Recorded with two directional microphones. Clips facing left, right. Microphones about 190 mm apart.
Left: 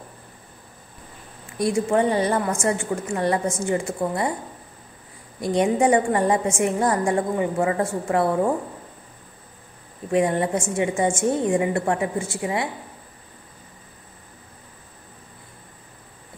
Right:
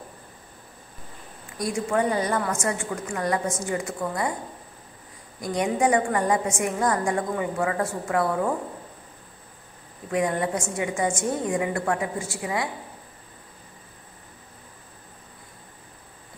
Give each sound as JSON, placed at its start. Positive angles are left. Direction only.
{"t": 1.6, "sound": "a woman's voice", "side_deg": 30}
{"t": 5.4, "sound": "a woman's voice", "side_deg": 30}
{"t": 10.1, "sound": "a woman's voice", "side_deg": 25}